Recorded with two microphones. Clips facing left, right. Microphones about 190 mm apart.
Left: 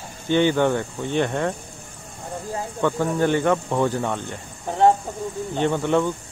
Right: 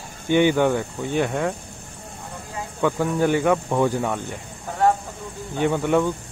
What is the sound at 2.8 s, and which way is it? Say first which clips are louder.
Speech: right 1 dB; 10° right (ahead or behind).